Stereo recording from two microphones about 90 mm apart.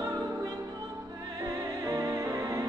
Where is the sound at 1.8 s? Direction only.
40° right (ahead or behind).